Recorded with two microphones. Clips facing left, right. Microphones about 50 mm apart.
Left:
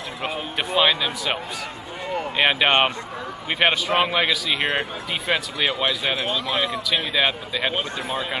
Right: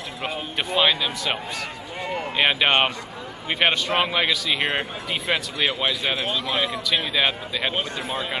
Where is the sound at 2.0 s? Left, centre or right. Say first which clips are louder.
Left 2 dB; right.